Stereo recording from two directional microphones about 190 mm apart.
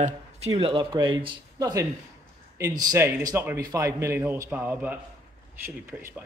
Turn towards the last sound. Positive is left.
turn(degrees=-10)  # may be behind; listen again after turning